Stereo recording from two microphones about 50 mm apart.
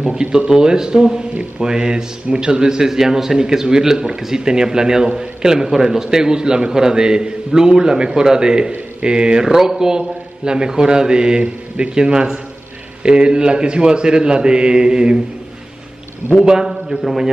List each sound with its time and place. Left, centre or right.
0.0 s speech: centre
16.4 s a man's voice: centre
17.0 s a man's voice: centre